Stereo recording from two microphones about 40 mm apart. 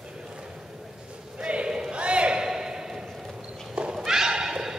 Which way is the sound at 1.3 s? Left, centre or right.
Right.